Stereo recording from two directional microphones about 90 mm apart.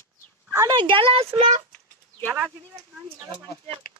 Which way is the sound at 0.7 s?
80° right.